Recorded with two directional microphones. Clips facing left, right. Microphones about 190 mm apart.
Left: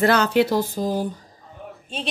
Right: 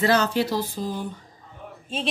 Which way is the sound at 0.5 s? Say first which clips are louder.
Left 5 dB; 45° left (ahead or behind).